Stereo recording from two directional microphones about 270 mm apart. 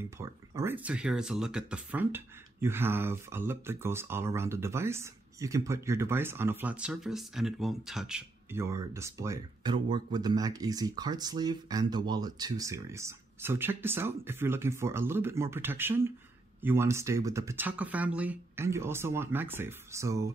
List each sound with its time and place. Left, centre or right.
0.2 s speech: centre